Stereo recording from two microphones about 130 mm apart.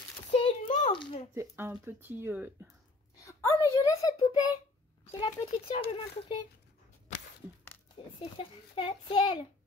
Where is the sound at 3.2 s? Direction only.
25° left (ahead or behind).